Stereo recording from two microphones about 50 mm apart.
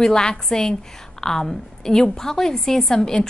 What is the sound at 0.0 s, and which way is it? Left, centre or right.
A woman's voice, centre.